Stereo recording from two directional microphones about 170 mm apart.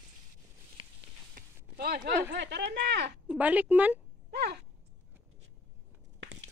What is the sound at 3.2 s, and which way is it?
Speech, 10° right (ahead or behind).